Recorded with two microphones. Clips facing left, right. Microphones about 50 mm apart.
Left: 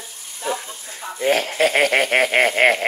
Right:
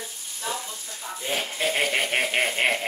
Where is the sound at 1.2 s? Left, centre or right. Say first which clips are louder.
Left 10 dB; left.